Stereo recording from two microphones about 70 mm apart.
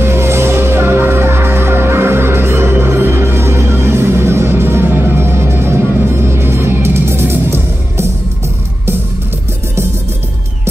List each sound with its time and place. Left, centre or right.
0.0 s music: right